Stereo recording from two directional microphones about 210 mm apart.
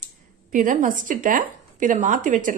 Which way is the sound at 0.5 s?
40° right (ahead or behind).